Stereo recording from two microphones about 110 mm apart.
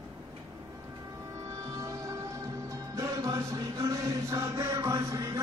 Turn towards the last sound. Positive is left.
turn(degrees=-30)  # may be behind; listen again after turning